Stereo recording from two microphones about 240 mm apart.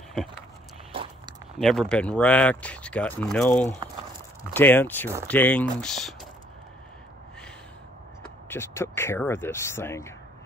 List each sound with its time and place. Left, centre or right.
1.6 s speech: centre
8.2 s speech: centre